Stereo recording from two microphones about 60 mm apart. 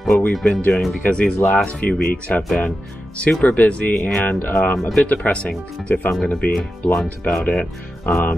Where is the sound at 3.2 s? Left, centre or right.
Left.